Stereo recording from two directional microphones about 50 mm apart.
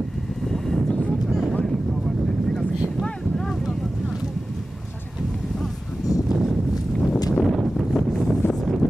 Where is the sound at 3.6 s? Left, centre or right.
Centre.